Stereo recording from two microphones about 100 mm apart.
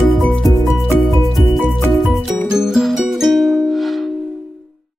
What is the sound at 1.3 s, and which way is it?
Music, centre (ahead or behind).